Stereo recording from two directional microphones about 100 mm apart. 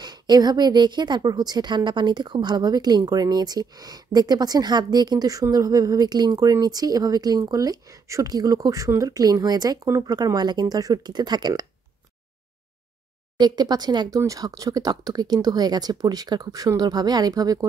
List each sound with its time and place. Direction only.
0.0 s a woman's voice: 45° right (ahead or behind)
13.4 s a woman's voice: 45° right (ahead or behind)